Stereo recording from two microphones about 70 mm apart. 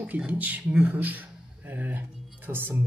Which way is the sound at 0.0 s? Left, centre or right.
Centre.